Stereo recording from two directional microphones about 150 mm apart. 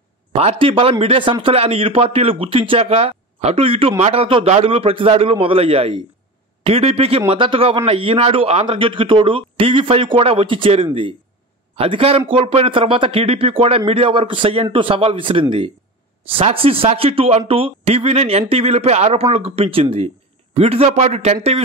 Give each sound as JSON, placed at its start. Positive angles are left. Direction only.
{"t": 0.3, "sound": "a man's voice", "side_deg": -40}